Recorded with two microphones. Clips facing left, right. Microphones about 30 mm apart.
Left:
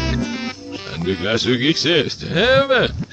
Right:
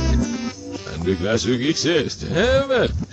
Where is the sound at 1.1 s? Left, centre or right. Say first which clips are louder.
Left 1 dB; left.